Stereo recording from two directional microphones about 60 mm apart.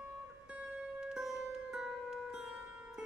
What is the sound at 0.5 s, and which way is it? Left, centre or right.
Music, right.